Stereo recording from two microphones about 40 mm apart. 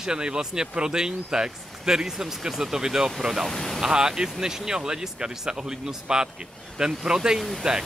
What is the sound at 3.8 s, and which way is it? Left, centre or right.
A man's voice, centre.